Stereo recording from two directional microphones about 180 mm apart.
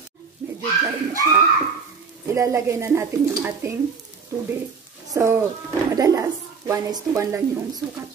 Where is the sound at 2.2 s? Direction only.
15° right (ahead or behind).